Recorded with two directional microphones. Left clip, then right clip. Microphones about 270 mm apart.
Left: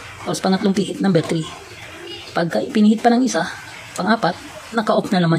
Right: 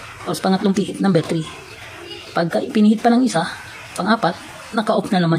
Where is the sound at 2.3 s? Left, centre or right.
Centre.